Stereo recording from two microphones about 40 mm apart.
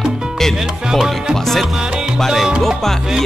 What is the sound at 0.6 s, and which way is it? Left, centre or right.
Music, centre.